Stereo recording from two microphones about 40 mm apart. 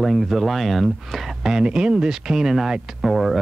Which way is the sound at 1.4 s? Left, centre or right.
Centre.